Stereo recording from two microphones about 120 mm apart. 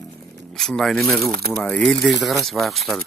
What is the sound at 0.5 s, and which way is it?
Speech, 5° left (ahead or behind).